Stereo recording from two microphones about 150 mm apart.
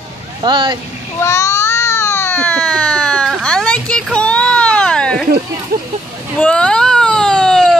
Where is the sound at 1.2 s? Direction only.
20° left (ahead or behind).